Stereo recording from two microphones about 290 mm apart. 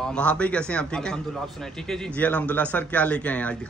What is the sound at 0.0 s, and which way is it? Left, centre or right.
A man's voice, centre.